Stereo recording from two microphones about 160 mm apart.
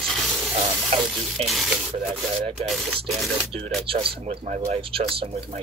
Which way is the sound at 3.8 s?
35° right (ahead or behind).